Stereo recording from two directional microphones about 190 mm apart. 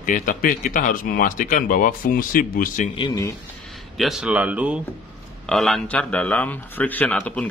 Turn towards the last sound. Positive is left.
turn(degrees=5)  # may be behind; listen again after turning